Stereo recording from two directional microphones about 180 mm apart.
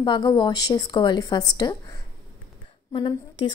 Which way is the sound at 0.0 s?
25° left (ahead or behind).